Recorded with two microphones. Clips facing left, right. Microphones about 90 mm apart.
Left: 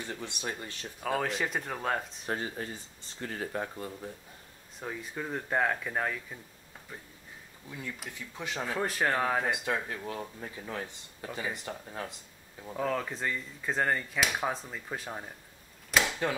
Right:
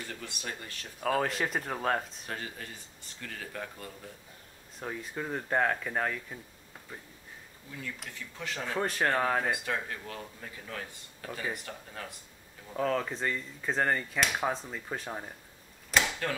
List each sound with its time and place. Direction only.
0.0 s speech: 25° left (ahead or behind)
1.0 s speech: centre (ahead or behind)
2.2 s speech: 30° left (ahead or behind)
4.7 s speech: centre (ahead or behind)
8.1 s speech: 15° left (ahead or behind)
8.7 s speech: centre (ahead or behind)
9.5 s speech: 15° left (ahead or behind)
12.7 s speech: centre (ahead or behind)
15.9 s a sound: 5° left (ahead or behind)